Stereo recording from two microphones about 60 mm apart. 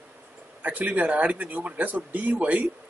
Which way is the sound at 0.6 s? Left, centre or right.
Right.